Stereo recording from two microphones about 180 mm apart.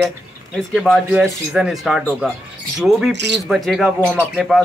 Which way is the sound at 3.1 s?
75° right (ahead or behind).